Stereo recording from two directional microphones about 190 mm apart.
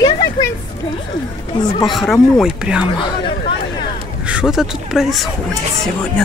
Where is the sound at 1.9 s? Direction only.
Centre (ahead or behind).